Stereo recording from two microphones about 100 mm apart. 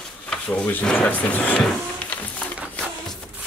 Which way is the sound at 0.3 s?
15° left (ahead or behind).